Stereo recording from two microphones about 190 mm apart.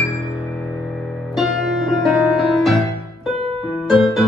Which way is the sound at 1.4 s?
Centre (ahead or behind).